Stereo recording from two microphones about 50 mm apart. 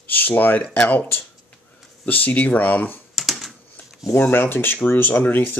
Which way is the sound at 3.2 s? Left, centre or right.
Centre.